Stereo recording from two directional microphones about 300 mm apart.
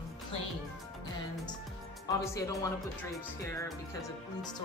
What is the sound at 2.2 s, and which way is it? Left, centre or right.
Speech, centre.